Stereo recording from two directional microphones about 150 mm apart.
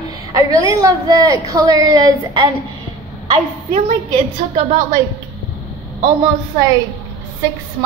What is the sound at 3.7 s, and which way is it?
Speech, 45° right (ahead or behind).